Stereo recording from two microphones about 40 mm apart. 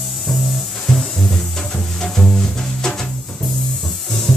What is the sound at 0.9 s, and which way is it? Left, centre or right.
Music, centre.